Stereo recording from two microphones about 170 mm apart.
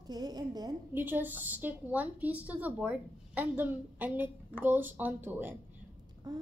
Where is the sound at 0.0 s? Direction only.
25° right (ahead or behind).